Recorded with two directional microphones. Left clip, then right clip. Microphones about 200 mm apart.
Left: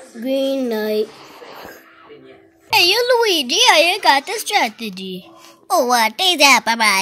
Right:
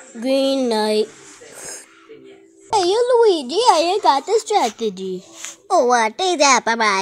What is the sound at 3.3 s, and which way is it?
Speech, 10° left (ahead or behind).